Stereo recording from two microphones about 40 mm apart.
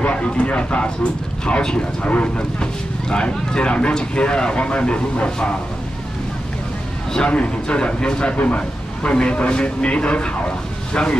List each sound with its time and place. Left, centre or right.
0.0 s a man's voice: left
7.2 s a man's voice: left